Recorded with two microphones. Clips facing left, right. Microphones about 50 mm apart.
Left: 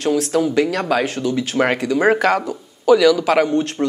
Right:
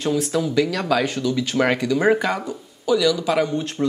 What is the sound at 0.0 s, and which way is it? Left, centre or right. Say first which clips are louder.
Speech: left 4 dB; left.